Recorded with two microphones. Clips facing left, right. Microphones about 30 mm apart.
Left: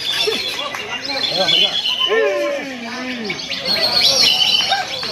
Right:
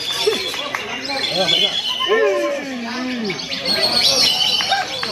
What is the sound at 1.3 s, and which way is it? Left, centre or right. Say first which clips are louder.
Squawk: left 2 dB; centre.